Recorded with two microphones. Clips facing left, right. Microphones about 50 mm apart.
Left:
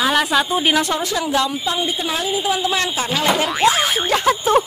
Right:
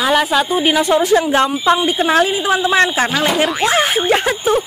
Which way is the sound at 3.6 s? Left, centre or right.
Right.